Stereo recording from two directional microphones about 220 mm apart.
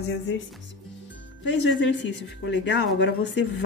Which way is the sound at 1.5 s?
55° left (ahead or behind).